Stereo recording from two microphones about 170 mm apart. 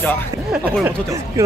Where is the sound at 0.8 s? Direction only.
20° right (ahead or behind).